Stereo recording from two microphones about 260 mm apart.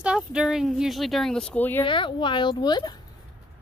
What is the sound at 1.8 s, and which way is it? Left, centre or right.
Speech, centre.